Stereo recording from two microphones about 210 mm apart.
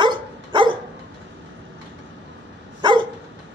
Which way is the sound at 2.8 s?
20° right (ahead or behind).